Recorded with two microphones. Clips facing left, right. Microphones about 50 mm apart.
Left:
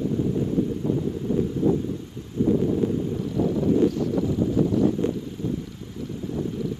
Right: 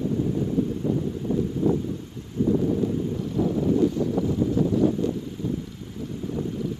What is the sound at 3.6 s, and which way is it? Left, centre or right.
Wind, left.